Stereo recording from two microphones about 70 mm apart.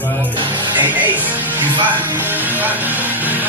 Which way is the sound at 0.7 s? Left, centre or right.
Right.